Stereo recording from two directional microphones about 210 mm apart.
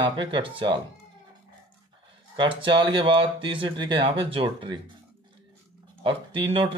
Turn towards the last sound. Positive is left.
turn(degrees=-25)  # may be behind; listen again after turning